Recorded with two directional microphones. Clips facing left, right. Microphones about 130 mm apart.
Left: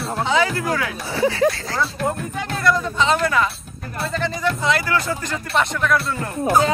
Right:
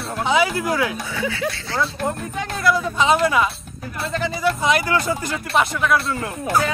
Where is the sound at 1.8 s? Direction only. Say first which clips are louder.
Right 1 dB; centre (ahead or behind).